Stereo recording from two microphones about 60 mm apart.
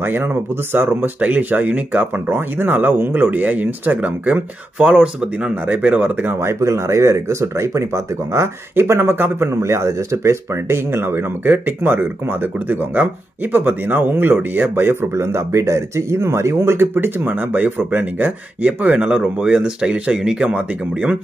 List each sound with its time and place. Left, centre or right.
0.0 s speech: right
2.2 s speech: right
6.4 s speech: right
8.7 s speech: right
9.5 s speech: right
18.2 s speech: right